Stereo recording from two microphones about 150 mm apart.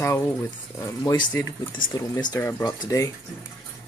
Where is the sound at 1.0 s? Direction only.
25° left (ahead or behind).